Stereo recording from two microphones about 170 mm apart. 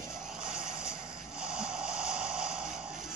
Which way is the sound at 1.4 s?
5° right (ahead or behind).